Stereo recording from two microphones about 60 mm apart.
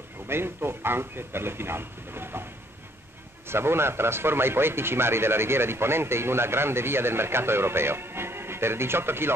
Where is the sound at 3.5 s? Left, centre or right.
Right.